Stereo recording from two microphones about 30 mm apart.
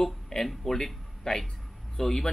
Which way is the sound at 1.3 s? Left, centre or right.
Left.